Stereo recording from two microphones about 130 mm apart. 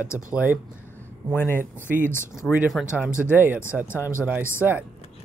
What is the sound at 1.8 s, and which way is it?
Speech, 20° left (ahead or behind).